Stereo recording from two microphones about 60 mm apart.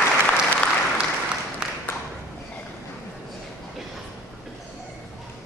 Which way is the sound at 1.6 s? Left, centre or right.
Centre.